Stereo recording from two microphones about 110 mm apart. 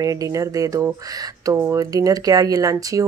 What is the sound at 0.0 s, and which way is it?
Speech, 30° right (ahead or behind).